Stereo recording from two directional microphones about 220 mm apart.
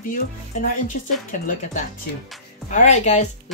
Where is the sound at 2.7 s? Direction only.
30° left (ahead or behind).